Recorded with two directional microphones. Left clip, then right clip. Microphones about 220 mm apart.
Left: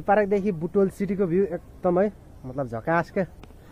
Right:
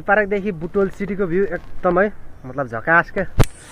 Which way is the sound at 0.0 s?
5° left (ahead or behind).